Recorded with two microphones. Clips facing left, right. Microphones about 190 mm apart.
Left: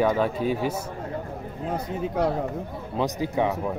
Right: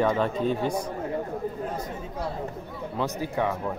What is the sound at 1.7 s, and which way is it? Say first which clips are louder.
Speech: left 7 dB; 70° left (ahead or behind).